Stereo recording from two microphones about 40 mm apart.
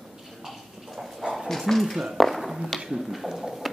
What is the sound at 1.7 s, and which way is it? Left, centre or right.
Speech, centre.